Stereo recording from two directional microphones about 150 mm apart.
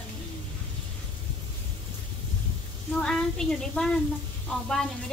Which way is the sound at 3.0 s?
5° left (ahead or behind).